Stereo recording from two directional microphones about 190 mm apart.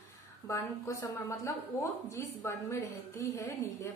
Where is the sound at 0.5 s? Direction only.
15° left (ahead or behind).